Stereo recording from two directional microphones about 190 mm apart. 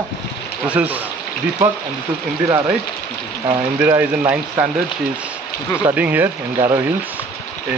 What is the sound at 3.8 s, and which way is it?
Speech, 10° right (ahead or behind).